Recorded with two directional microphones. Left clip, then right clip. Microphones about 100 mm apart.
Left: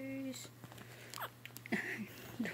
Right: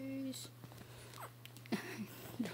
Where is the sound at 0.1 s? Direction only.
25° right (ahead or behind).